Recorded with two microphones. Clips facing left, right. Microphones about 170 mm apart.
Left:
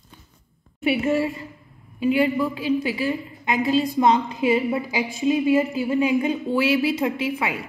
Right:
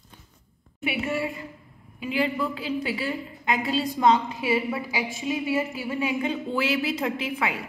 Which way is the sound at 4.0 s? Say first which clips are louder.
Left 2 dB; 25° left (ahead or behind).